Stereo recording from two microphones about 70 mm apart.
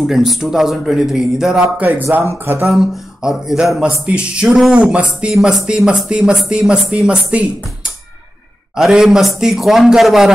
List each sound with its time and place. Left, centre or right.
0.0 s a man's voice: centre
1.8 s speech: right
2.6 s a man's voice: centre